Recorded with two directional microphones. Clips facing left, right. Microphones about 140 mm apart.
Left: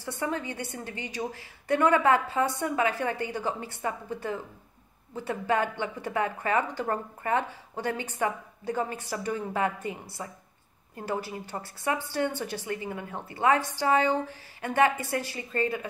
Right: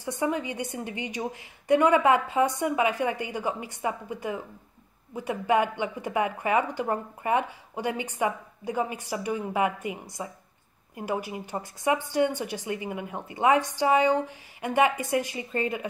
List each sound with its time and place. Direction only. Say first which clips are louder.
0.0 s speech: right 3 dB; 15° right (ahead or behind)